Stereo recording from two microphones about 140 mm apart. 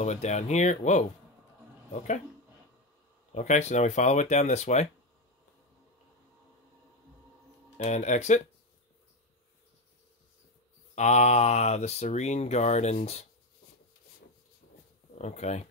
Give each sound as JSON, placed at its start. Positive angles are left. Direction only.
{"t": 0.0, "sound": "speech", "side_deg": 55}
{"t": 3.3, "sound": "speech", "side_deg": 55}
{"t": 7.7, "sound": "speech", "side_deg": 55}
{"t": 11.0, "sound": "speech", "side_deg": 55}
{"t": 15.1, "sound": "speech", "side_deg": 55}